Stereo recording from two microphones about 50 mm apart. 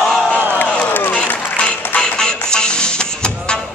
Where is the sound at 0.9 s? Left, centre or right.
Left.